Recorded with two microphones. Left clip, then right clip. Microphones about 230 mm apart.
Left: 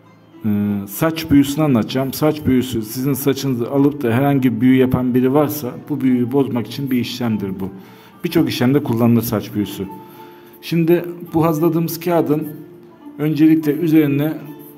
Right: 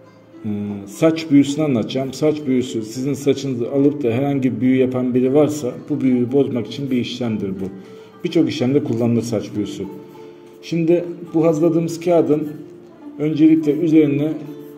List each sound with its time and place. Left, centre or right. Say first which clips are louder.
0.5 s speech: left 5 dB; left